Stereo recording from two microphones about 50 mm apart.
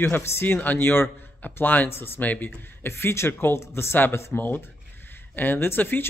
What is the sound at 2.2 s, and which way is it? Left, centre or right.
Speech, left.